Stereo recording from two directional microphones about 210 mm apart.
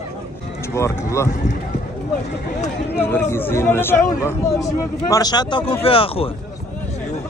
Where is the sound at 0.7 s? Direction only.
15° left (ahead or behind).